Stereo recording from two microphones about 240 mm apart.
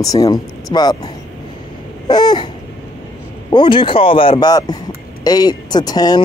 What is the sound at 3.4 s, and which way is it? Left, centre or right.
Speech, centre.